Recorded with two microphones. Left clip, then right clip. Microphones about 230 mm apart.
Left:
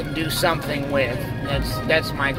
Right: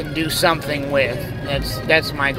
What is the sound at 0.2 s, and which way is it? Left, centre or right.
Speech, centre.